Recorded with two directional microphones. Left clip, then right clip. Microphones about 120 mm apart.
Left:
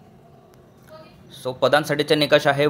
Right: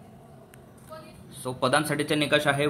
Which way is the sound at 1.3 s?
30° left (ahead or behind).